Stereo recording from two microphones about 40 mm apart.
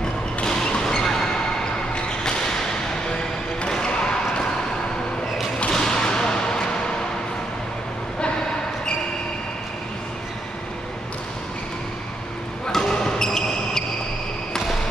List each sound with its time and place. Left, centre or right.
0.5 s a sound: centre
3.6 s basketball bounce: centre
5.7 s whip: centre
12.7 s basketball bounce: centre